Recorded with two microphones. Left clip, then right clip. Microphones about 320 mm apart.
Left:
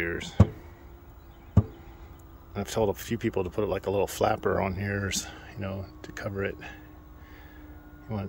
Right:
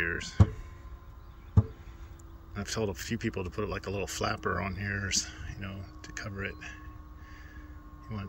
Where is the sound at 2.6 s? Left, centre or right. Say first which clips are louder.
Left 6 dB; centre.